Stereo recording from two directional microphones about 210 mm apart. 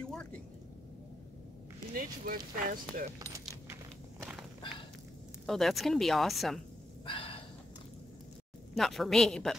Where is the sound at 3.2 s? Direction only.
15° right (ahead or behind).